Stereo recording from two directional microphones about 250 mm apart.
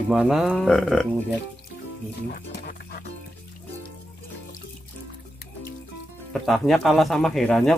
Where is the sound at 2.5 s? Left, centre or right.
Left.